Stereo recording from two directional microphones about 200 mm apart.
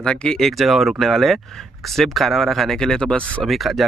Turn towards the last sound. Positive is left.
turn(degrees=0)  # may be behind; listen again after turning